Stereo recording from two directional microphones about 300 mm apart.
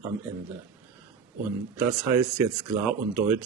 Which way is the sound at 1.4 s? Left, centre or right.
Centre.